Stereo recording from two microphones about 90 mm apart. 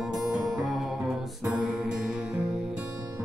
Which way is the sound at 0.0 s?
5° right (ahead or behind).